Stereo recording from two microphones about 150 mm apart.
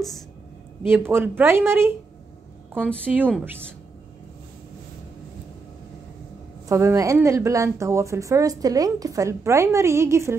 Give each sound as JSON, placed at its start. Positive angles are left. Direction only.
{"t": 0.8, "sound": "speech", "side_deg": -15}
{"t": 3.1, "sound": "speech", "side_deg": -10}
{"t": 6.7, "sound": "a woman's voice", "side_deg": -20}